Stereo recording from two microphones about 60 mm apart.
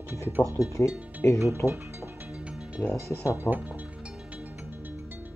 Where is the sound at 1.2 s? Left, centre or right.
Left.